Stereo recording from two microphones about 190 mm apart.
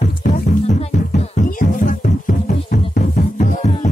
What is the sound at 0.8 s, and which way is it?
Music, 40° left (ahead or behind).